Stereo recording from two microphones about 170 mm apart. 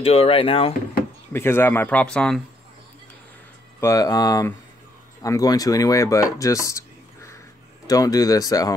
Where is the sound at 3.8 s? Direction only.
20° left (ahead or behind).